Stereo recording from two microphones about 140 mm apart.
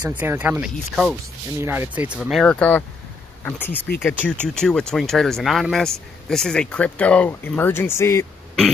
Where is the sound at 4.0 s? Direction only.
15° left (ahead or behind).